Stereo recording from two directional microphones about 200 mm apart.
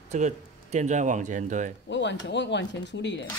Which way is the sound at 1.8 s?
60° left (ahead or behind).